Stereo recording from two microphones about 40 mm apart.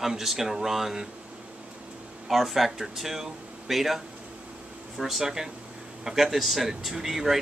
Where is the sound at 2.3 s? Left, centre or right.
Centre.